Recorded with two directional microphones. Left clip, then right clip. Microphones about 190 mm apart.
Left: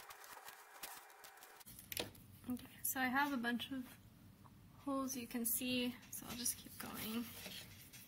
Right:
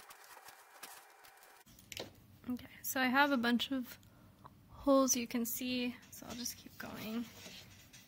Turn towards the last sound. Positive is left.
turn(degrees=-30)  # may be behind; listen again after turning